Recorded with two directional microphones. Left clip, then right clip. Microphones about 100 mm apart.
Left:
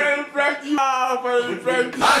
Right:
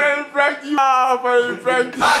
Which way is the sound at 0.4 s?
20° right (ahead or behind).